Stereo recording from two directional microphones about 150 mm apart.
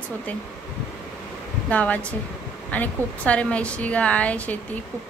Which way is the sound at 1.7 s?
10° left (ahead or behind).